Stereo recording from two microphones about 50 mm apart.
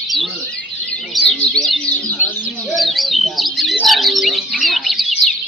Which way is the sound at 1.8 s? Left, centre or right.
Left.